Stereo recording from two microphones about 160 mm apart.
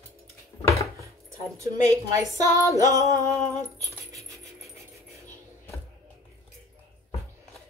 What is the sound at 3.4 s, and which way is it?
Keys jangling, 45° left (ahead or behind).